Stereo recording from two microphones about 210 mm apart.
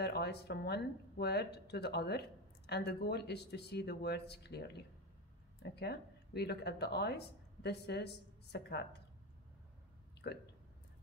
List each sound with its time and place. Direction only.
0.0 s speech: 50° left (ahead or behind)
10.2 s speech: 55° left (ahead or behind)